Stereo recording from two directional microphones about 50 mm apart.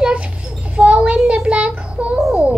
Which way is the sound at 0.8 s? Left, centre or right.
Right.